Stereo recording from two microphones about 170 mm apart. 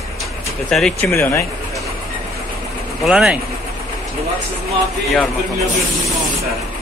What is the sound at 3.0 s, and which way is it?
Speech, 5° right (ahead or behind).